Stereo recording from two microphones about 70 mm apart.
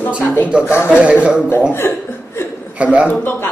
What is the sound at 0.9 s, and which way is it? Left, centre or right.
Speech, centre.